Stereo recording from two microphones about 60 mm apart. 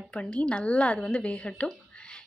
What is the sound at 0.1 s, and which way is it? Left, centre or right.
A woman's voice, centre.